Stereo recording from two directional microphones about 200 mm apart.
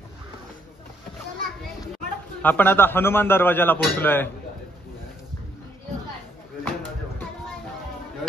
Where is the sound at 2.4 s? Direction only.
10° left (ahead or behind).